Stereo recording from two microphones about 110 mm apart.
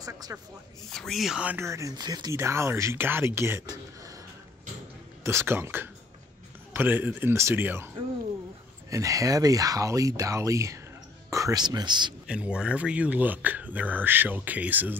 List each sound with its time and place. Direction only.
0.0 s speech: 35° right (ahead or behind)
0.8 s speech: 5° left (ahead or behind)
1.4 s speech: 15° right (ahead or behind)
1.7 s speech: 30° right (ahead or behind)
2.3 s speech: 25° right (ahead or behind)
5.2 s speech: 25° right (ahead or behind)
8.9 s speech: 30° right (ahead or behind)
12.3 s speech: 10° right (ahead or behind)